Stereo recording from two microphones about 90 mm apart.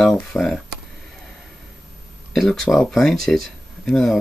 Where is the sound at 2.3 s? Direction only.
5° left (ahead or behind).